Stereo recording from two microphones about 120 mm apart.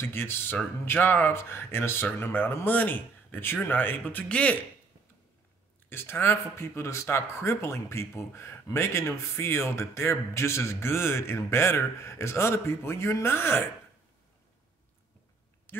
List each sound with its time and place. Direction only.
0.0 s speech: 20° left (ahead or behind)
5.9 s speech: 20° left (ahead or behind)